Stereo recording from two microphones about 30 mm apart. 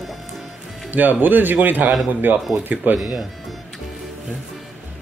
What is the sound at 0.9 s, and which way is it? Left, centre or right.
Speech, right.